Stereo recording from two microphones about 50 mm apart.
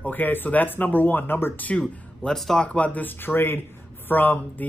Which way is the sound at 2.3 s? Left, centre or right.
Centre.